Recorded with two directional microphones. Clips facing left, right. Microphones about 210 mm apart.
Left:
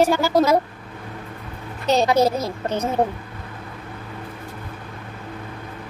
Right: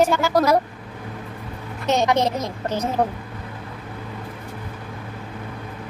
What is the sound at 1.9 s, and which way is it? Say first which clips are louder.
Speech: left 1 dB; 30° left (ahead or behind).